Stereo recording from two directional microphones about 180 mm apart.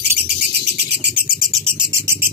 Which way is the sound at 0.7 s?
70° right (ahead or behind).